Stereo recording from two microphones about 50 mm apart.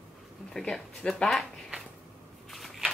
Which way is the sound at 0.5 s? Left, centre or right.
Centre.